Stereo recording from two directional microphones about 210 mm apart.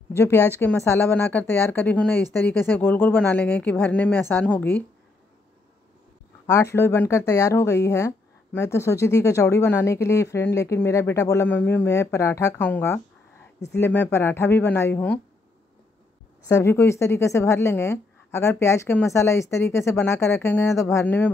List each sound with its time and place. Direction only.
0.1 s speech: 10° left (ahead or behind)
6.4 s speech: 15° left (ahead or behind)
16.4 s speech: 15° left (ahead or behind)